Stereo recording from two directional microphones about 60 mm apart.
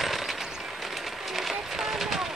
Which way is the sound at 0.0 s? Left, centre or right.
Centre.